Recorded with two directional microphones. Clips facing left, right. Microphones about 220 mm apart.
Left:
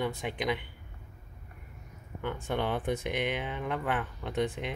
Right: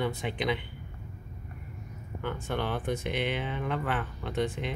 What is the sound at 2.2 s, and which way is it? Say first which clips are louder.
Speech: even; 15° left (ahead or behind).